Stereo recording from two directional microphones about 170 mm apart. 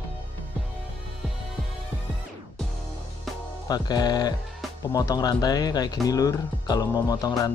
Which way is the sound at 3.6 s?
25° left (ahead or behind).